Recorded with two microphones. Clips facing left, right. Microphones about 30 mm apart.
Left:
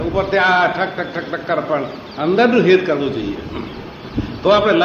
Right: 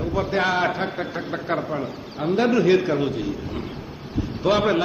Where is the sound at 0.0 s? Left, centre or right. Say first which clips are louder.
Left 7 dB; left.